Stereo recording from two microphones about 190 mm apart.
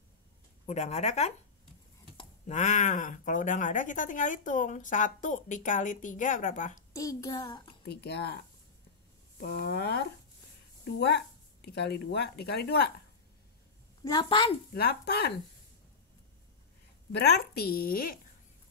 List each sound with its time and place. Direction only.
0.7 s speech: 35° left (ahead or behind)
6.9 s a child's voice: 15° left (ahead or behind)
7.8 s speech: 60° left (ahead or behind)
14.0 s a child's voice: 25° left (ahead or behind)
14.7 s speech: 55° left (ahead or behind)
17.1 s speech: 60° left (ahead or behind)